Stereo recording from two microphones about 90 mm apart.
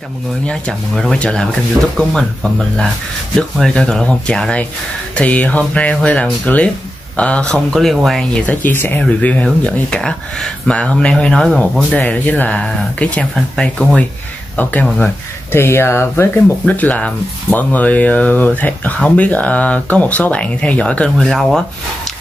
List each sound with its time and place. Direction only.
0.5 s speech: 10° left (ahead or behind)
8.7 s speech: 20° left (ahead or behind)
11.4 s speech: centre (ahead or behind)
11.9 s speech: 15° left (ahead or behind)
14.6 s speech: 20° left (ahead or behind); by 22.1 s 5° left (ahead or behind)